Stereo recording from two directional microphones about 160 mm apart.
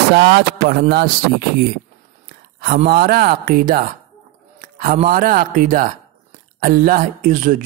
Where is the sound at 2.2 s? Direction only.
70° right (ahead or behind).